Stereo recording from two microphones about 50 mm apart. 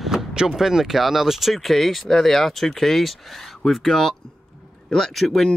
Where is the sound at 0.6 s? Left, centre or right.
Centre.